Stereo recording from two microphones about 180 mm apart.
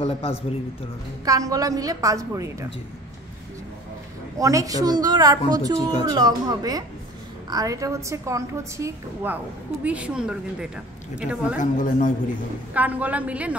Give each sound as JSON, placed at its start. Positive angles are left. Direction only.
{"t": 0.0, "sound": "speech", "side_deg": 35}
{"t": 1.2, "sound": "a woman's voice", "side_deg": -20}
{"t": 4.4, "sound": "a woman's voice", "side_deg": -20}
{"t": 11.6, "sound": "a man's voice", "side_deg": 45}
{"t": 12.7, "sound": "a woman's voice", "side_deg": -10}